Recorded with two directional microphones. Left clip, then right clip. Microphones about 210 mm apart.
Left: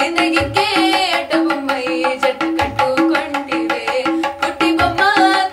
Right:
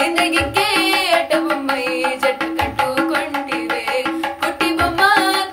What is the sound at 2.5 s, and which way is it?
Tabla, 15° left (ahead or behind).